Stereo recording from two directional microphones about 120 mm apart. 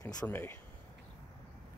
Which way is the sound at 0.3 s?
20° left (ahead or behind).